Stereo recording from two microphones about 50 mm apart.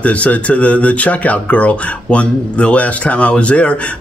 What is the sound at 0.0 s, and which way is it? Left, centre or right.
A man's voice, left.